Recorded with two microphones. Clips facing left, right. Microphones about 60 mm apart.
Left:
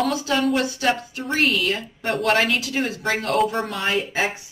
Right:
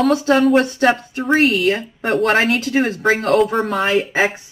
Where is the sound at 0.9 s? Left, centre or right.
Centre.